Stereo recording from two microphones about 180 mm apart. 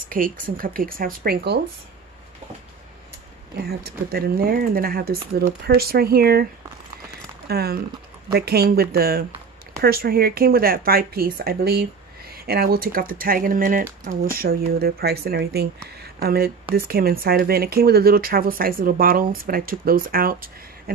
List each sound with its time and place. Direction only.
0.1 s speech: 50° right (ahead or behind)
3.6 s speech: 60° right (ahead or behind)
7.4 s speech: 60° right (ahead or behind)